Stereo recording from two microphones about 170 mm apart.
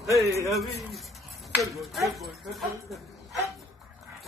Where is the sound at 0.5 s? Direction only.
Centre (ahead or behind).